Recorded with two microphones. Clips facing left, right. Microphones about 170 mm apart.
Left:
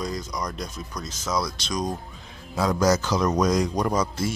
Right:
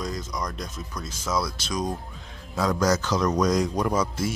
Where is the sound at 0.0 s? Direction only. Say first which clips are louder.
Left 1 dB; centre (ahead or behind).